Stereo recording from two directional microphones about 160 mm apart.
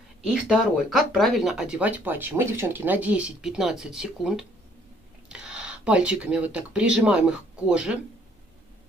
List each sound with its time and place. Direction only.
0.2 s speech: 5° right (ahead or behind)